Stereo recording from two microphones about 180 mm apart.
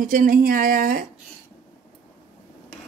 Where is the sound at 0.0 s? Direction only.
50° right (ahead or behind).